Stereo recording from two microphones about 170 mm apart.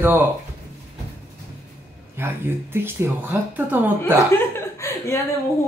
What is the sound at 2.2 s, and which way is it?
Speech, 15° right (ahead or behind).